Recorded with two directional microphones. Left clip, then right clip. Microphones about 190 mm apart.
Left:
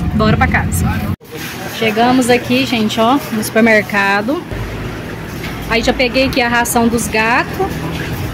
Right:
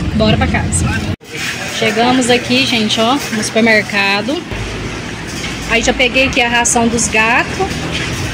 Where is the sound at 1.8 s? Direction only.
10° left (ahead or behind).